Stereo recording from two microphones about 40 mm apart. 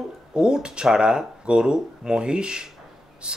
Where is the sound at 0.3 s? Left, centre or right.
Right.